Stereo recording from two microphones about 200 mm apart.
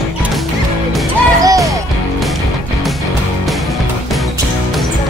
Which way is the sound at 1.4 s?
15° right (ahead or behind).